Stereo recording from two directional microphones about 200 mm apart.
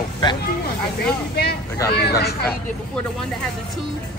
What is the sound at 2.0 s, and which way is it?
Speech, 55° left (ahead or behind).